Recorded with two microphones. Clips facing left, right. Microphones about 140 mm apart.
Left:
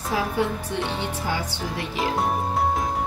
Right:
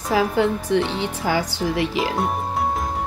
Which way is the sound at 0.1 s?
90° right.